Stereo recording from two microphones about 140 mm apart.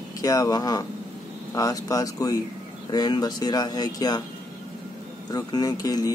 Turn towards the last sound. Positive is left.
turn(degrees=25)  # may be behind; listen again after turning